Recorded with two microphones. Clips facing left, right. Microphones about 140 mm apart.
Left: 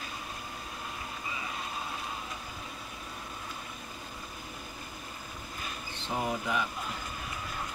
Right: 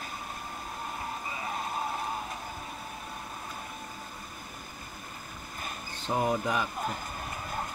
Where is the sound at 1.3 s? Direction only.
45° right (ahead or behind).